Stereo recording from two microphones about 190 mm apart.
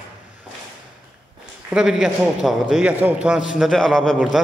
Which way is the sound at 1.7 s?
Centre (ahead or behind).